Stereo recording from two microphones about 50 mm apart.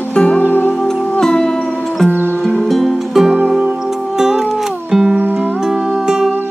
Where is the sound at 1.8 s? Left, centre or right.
Centre.